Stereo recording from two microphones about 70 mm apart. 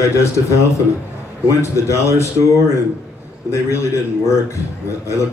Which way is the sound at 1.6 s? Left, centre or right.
Left.